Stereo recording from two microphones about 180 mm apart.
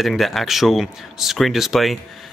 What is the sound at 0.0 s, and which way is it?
Speech, centre (ahead or behind).